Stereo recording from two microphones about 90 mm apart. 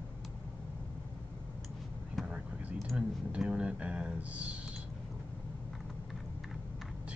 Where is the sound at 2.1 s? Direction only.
15° right (ahead or behind).